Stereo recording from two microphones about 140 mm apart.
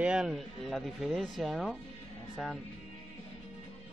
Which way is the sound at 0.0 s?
5° right (ahead or behind).